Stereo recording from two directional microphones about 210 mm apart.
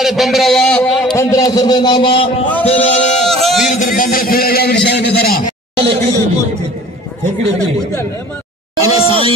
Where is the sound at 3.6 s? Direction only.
35° left (ahead or behind).